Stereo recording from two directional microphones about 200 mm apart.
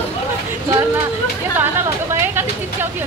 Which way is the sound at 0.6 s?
15° right (ahead or behind).